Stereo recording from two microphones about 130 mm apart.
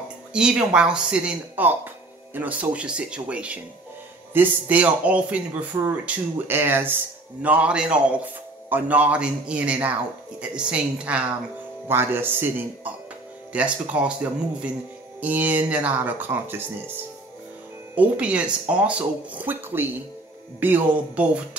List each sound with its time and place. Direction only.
0.3 s speech: 5° right (ahead or behind)
15.1 s speech: 10° right (ahead or behind)
17.9 s speech: 10° right (ahead or behind)